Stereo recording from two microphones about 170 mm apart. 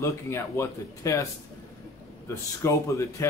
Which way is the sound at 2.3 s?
15° left (ahead or behind).